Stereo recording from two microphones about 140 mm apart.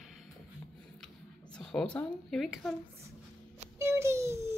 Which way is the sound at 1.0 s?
5° left (ahead or behind).